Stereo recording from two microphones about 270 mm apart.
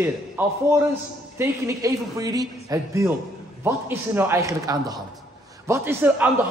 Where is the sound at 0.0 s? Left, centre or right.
Centre.